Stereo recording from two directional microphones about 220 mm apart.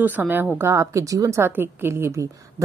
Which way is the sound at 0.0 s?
10° right (ahead or behind).